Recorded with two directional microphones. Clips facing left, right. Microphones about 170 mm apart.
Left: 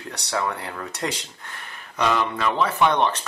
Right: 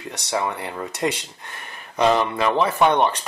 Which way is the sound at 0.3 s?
20° right (ahead or behind).